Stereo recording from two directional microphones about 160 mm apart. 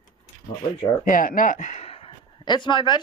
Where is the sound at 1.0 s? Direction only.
55° left (ahead or behind).